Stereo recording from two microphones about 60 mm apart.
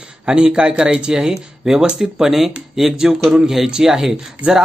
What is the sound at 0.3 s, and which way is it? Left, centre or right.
Speech, centre.